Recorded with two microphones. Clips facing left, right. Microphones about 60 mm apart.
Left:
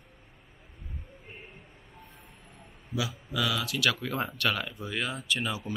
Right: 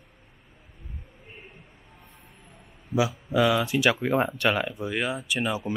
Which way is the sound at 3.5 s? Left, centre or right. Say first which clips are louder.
Right 6 dB; right.